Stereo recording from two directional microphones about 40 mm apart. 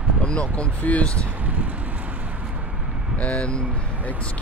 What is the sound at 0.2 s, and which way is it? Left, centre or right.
Speech, left.